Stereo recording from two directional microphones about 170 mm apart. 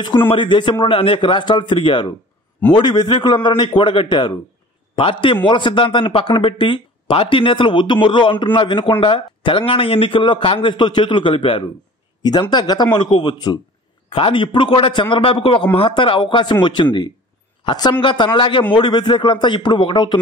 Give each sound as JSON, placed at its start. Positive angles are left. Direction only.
{"t": 0.3, "sound": "a man's voice", "side_deg": 30}